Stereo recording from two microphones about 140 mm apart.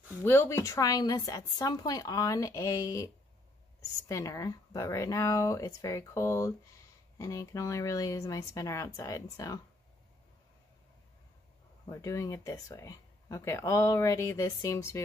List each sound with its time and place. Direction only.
0.2 s speech: 15° left (ahead or behind)
4.1 s speech: 25° left (ahead or behind)
11.9 s speech: 20° left (ahead or behind)